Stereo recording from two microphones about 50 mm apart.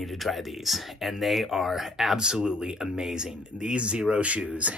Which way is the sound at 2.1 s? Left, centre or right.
Centre.